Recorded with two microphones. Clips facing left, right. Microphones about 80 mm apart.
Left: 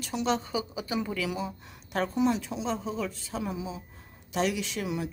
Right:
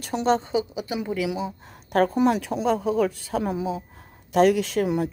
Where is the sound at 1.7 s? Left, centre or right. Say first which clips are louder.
Right 12 dB; right.